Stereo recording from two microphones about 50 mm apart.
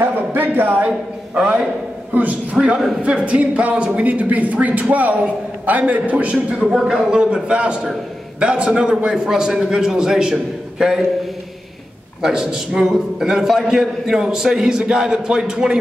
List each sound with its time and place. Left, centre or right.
0.0 s speech: right
2.5 s a man's voice: centre
3.0 s a man's voice: right
6.7 s a man's voice: centre
7.4 s a man's voice: centre
12.2 s a man's voice: centre